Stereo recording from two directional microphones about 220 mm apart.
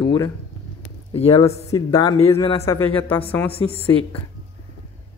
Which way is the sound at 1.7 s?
20° left (ahead or behind).